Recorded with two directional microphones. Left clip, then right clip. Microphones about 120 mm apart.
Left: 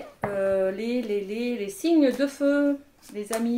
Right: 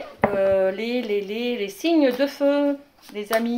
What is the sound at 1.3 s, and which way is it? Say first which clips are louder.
Speech: right 3 dB; 45° right (ahead or behind).